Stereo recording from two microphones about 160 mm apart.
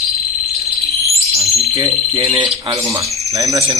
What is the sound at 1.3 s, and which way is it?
Bird, 20° right (ahead or behind).